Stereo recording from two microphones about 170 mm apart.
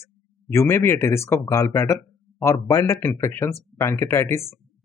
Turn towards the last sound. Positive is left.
turn(degrees=15)  # may be behind; listen again after turning